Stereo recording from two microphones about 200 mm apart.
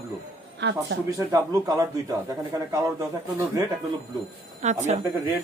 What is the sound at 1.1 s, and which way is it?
Speech, 15° right (ahead or behind).